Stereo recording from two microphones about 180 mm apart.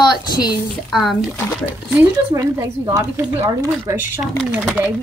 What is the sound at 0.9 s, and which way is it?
Speech, centre (ahead or behind).